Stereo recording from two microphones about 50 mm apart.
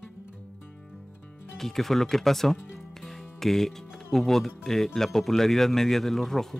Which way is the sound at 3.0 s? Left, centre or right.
Centre.